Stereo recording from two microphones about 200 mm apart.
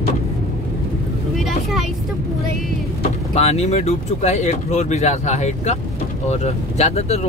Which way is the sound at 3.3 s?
30° left (ahead or behind).